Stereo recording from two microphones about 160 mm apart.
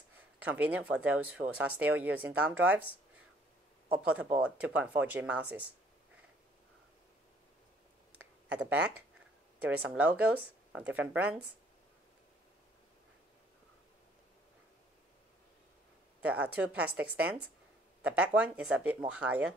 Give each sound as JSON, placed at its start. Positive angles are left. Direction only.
{"t": 0.4, "sound": "speech", "side_deg": -10}
{"t": 3.9, "sound": "speech", "side_deg": -10}
{"t": 8.5, "sound": "speech", "side_deg": -5}
{"t": 16.2, "sound": "speech", "side_deg": -10}